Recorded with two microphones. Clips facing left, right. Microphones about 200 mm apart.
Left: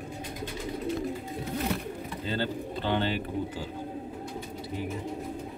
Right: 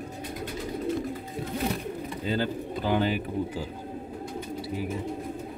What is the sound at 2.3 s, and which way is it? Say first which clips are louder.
Speech: right 3 dB; 10° right (ahead or behind).